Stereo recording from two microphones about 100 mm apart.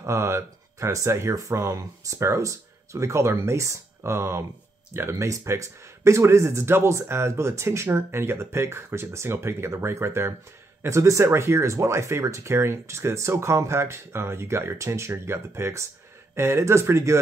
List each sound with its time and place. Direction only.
0.0 s speech: 30° right (ahead or behind)